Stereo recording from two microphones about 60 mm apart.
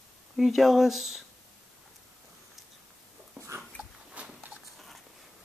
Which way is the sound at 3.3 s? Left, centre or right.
Right.